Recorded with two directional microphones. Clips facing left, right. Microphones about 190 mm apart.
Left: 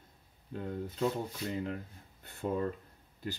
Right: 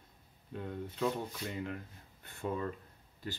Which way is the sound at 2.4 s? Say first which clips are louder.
Left 3 dB; 40° left (ahead or behind).